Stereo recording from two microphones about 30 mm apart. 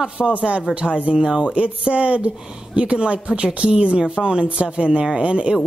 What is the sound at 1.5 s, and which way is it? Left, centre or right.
Speech, right.